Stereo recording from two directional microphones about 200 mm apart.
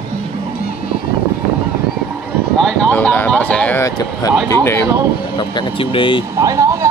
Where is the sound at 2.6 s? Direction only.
5° left (ahead or behind).